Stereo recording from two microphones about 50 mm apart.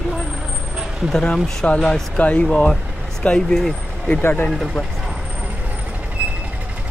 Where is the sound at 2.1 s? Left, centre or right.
Left.